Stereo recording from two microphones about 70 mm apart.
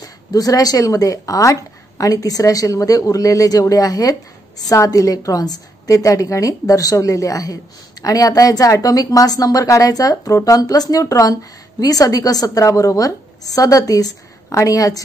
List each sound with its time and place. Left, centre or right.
0.0 s a woman's voice: left